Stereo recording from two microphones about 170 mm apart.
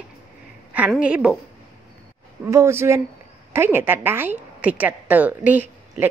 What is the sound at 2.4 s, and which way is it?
A woman's voice, 15° right (ahead or behind).